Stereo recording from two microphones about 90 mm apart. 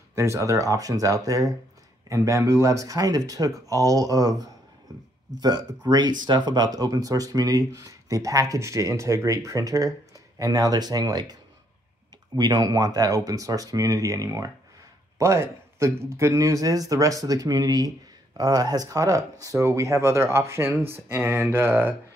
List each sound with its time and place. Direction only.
0.1 s speech: 35° right (ahead or behind)
12.4 s speech: 50° right (ahead or behind); by 21.9 s 20° right (ahead or behind)